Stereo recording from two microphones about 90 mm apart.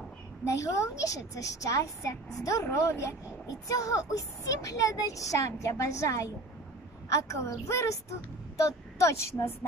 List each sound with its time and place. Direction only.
0.5 s speech: 35° left (ahead or behind)